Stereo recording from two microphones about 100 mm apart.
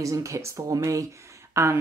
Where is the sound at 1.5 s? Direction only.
25° right (ahead or behind).